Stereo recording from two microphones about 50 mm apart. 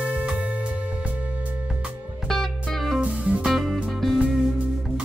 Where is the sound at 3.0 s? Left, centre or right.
Right.